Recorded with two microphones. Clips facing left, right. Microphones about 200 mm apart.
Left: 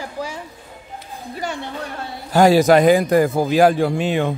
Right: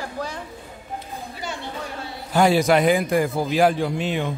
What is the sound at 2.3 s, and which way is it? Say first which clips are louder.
A man's voice: left 5 dB; 40° left (ahead or behind).